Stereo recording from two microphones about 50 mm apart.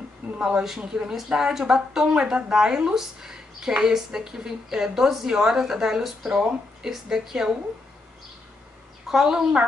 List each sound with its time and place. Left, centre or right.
0.4 s speech: centre
9.1 s speech: centre